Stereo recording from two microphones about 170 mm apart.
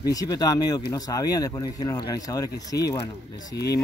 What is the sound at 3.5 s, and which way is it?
Speech, 75° left (ahead or behind).